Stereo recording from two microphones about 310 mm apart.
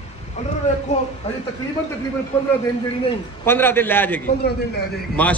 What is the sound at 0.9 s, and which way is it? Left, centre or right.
Speech, left.